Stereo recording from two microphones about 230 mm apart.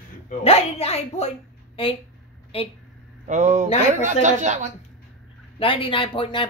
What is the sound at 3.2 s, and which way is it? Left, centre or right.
Speech, right.